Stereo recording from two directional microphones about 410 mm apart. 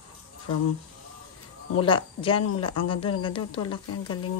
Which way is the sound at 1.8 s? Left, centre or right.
Centre.